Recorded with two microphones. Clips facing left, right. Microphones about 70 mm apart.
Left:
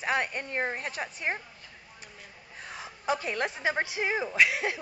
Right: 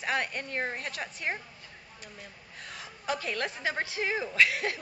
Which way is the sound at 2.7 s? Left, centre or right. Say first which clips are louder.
Left 3 dB; left.